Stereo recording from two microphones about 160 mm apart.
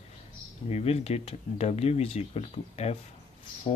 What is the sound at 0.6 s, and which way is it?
Speech, 40° left (ahead or behind).